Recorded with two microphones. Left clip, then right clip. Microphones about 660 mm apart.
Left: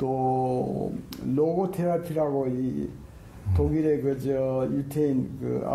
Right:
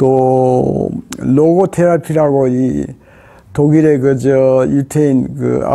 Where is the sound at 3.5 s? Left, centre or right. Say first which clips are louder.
Right 14 dB; right.